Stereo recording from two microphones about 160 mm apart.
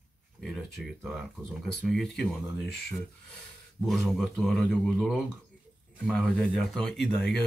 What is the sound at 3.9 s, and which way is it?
Speech, centre (ahead or behind).